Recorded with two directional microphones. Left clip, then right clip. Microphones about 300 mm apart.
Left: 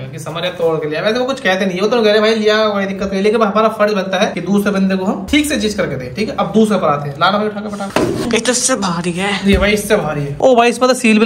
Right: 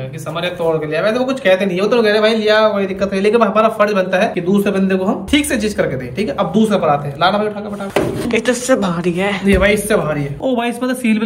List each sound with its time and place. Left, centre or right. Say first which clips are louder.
0.9 s speech: even; centre
10.4 s speech: left 10 dB; centre